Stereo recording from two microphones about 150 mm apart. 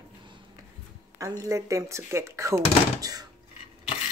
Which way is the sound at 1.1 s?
20° right (ahead or behind).